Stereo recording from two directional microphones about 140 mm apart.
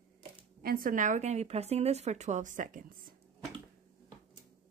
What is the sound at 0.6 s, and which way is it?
A woman's voice, 90° right.